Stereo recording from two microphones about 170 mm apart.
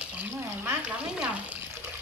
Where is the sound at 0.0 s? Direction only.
10° right (ahead or behind).